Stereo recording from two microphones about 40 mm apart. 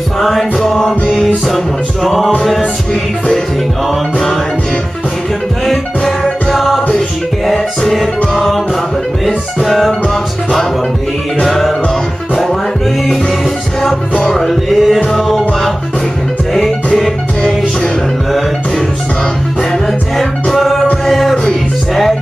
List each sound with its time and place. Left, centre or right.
0.2 s music: centre
2.0 s music: centre
2.6 s music: centre
6.5 s music: centre
9.2 s music: centre
11.4 s music: centre
14.3 s music: centre
20.2 s music: centre